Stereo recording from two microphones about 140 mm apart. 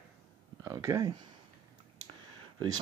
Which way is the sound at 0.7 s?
20° right (ahead or behind).